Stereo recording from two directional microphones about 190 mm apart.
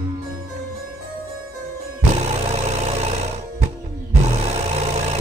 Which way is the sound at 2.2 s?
35° right (ahead or behind).